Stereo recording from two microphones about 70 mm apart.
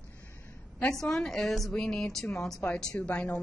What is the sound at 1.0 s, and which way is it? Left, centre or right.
A woman's voice, centre.